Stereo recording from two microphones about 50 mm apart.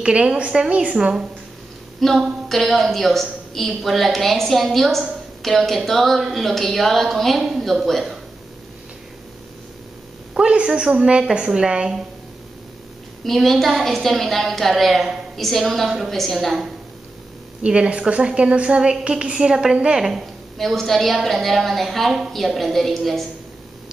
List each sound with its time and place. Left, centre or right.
0.0 s a woman's voice: centre
0.9 s a woman's voice: centre
2.0 s a woman's voice: centre
10.3 s a woman's voice: right
13.2 s a woman's voice: centre
17.6 s a woman's voice: right
20.5 s a woman's voice: centre